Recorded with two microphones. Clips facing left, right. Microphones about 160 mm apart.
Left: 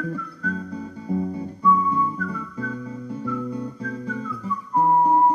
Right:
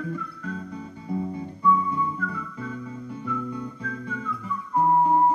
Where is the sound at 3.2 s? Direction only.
35° left (ahead or behind).